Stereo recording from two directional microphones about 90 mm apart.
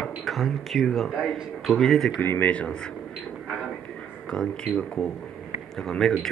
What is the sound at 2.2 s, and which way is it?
Speech, 20° left (ahead or behind).